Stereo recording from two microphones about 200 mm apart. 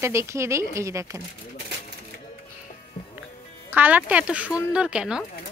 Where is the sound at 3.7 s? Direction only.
10° right (ahead or behind).